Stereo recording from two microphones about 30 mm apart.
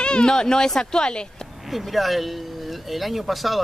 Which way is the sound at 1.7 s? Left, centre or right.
Centre.